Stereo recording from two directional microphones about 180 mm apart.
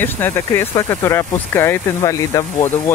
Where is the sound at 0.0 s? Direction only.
10° left (ahead or behind).